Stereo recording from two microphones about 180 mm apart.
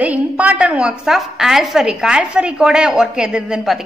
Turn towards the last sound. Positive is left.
turn(degrees=-5)  # may be behind; listen again after turning